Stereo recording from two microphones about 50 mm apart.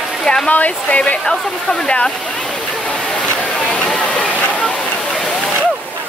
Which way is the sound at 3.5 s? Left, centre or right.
Left.